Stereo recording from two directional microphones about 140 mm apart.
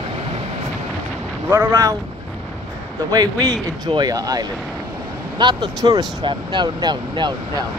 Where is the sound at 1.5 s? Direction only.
20° right (ahead or behind).